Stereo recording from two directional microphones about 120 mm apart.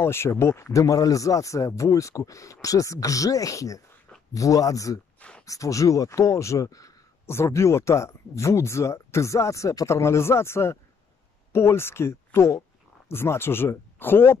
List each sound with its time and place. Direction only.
0.0 s speech: 20° left (ahead or behind)